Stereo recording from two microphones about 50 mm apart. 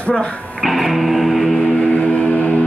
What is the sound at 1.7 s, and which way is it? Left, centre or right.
Music, centre.